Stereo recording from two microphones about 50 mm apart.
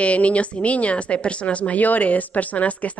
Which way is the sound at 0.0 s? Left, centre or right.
Left.